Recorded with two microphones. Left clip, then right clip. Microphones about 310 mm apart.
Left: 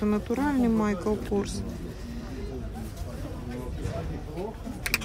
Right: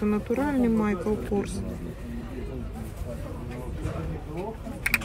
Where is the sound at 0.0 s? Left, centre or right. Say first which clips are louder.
Right 1 dB; left.